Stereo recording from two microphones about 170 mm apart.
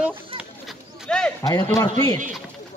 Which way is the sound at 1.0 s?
5° left (ahead or behind).